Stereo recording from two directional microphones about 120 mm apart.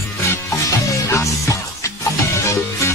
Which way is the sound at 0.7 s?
25° left (ahead or behind).